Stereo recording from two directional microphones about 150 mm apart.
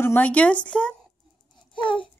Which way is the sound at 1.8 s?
35° left (ahead or behind).